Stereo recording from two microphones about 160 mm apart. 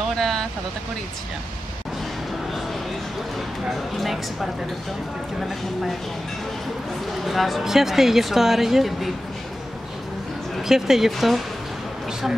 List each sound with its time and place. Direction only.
0.1 s vehicle: centre (ahead or behind)
3.9 s speech: centre (ahead or behind)
7.2 s speech: centre (ahead or behind)
10.7 s speech: centre (ahead or behind)